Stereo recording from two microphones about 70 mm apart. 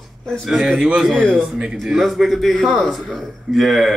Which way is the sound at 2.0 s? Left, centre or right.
Centre.